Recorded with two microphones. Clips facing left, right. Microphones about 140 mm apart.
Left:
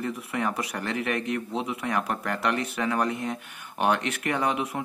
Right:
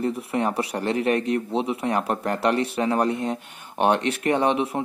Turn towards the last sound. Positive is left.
turn(degrees=-30)  # may be behind; listen again after turning